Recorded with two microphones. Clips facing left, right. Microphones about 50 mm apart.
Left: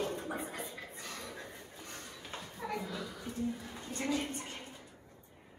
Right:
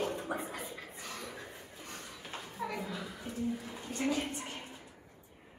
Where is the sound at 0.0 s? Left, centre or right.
Right.